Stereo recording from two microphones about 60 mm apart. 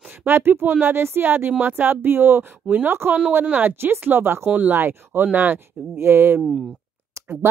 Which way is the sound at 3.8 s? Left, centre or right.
Right.